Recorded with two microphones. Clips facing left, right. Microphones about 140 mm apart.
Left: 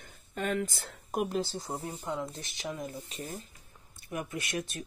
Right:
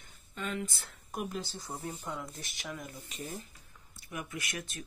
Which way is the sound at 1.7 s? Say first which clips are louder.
Left 3 dB; 25° left (ahead or behind).